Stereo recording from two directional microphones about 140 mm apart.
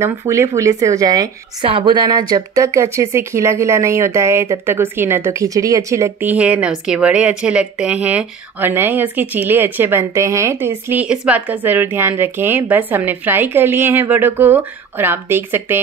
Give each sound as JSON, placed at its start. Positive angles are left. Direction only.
{"t": 0.0, "sound": "speech", "side_deg": -20}
{"t": 1.7, "sound": "speech", "side_deg": -35}
{"t": 6.3, "sound": "a woman's voice", "side_deg": -10}